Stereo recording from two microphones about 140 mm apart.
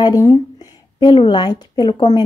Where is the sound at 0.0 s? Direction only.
25° left (ahead or behind).